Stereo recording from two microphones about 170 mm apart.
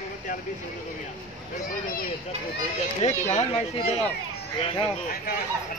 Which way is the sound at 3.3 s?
40° left (ahead or behind).